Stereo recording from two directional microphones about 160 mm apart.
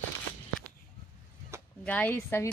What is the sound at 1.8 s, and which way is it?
Speech, 10° left (ahead or behind).